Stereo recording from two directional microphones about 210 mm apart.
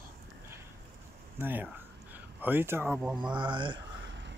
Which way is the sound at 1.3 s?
10° right (ahead or behind).